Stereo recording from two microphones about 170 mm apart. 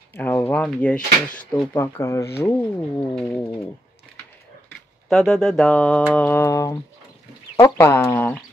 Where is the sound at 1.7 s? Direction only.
15° left (ahead or behind).